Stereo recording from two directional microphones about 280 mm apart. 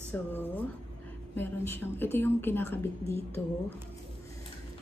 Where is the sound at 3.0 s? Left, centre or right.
Centre.